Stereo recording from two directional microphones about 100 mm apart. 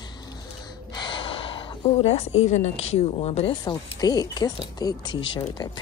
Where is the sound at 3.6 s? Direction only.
40° left (ahead or behind).